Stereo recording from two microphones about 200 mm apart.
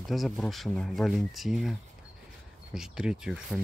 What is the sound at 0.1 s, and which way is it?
Speech, centre (ahead or behind).